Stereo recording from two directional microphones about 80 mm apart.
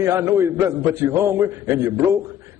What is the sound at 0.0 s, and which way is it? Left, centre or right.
A man's voice, right.